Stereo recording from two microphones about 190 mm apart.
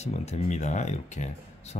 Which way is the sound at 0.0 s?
35° left (ahead or behind).